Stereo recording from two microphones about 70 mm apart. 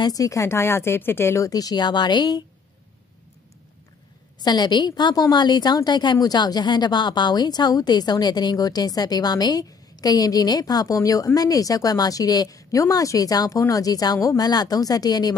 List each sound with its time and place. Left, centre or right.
0.0 s speech: left
1.4 s speech: left
4.4 s a woman's voice: left
6.1 s a woman's voice: left